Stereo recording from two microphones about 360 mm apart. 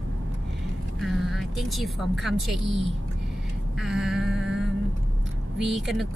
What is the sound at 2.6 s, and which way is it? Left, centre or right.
Speech, right.